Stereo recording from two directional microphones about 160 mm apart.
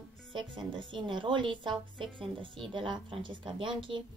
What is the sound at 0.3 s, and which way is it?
A woman's voice, 30° right (ahead or behind).